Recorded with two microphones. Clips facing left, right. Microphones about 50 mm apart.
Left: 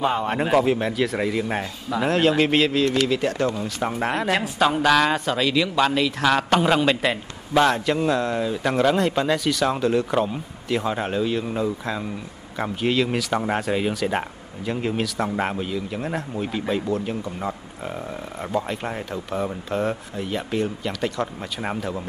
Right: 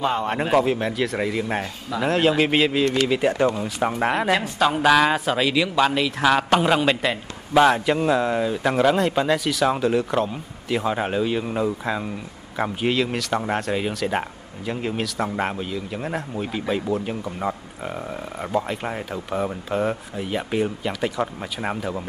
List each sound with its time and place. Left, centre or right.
0.0 s a man's voice: centre
3.1 s a man's voice: centre